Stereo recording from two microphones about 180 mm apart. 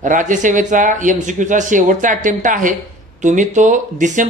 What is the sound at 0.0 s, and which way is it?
Speech, 45° right (ahead or behind).